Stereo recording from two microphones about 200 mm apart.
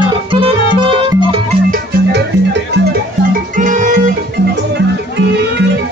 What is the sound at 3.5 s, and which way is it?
Music, 40° right (ahead or behind).